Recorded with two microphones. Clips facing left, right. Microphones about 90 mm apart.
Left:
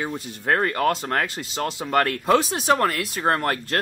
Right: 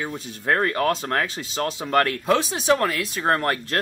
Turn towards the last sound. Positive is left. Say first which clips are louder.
# even
turn(degrees=0)  # may be behind; listen again after turning